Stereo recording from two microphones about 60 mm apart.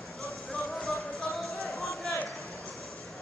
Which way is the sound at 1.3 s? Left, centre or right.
Centre.